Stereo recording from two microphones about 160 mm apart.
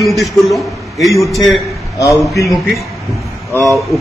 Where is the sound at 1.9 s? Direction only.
20° left (ahead or behind).